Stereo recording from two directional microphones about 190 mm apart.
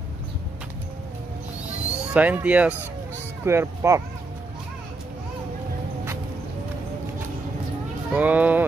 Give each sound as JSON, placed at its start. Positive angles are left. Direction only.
{"t": 1.7, "sound": "owl", "side_deg": -10}
{"t": 3.4, "sound": "speech", "side_deg": -15}
{"t": 8.1, "sound": "speech", "side_deg": -10}